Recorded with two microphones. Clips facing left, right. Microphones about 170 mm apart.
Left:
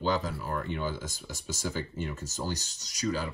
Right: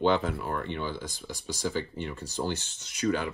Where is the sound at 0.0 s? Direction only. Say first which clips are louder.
Right 4 dB; 40° left (ahead or behind).